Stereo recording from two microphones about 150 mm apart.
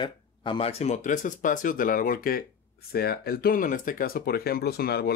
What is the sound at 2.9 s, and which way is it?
Speech, 90° left.